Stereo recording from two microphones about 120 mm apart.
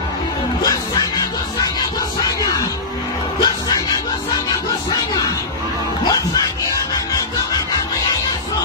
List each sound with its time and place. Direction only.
0.6 s music: 30° left (ahead or behind)
3.3 s music: 35° left (ahead or behind)
6.0 s music: 30° left (ahead or behind)